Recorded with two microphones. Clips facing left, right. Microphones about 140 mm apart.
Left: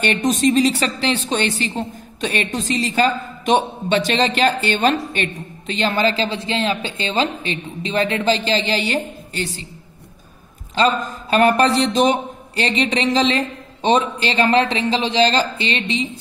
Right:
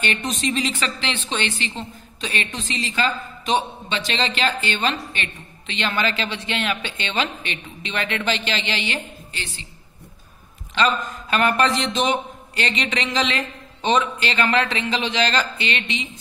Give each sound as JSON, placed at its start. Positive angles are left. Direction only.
{"t": 0.0, "sound": "a woman's voice", "side_deg": 45}
{"t": 10.7, "sound": "a woman's voice", "side_deg": 35}